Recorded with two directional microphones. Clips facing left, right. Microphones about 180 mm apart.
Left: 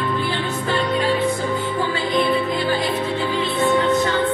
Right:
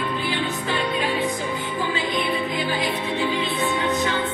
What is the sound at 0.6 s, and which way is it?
Music, 45° left (ahead or behind).